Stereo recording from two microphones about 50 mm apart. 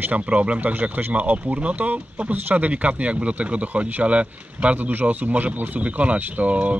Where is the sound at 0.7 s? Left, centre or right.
Right.